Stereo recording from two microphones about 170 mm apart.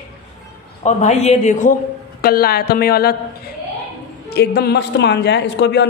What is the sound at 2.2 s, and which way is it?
Speech, 65° left (ahead or behind).